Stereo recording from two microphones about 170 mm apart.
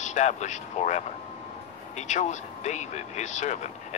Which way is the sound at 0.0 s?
45° left (ahead or behind).